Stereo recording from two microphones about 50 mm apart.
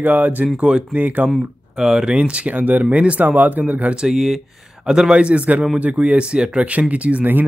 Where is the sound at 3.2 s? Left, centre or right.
Right.